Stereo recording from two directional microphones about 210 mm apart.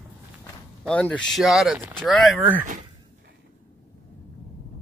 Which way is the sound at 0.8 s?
5° left (ahead or behind).